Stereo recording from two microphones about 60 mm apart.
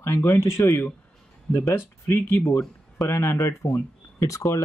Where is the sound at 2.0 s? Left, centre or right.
Left.